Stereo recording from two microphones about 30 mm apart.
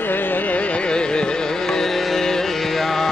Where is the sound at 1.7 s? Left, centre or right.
Centre.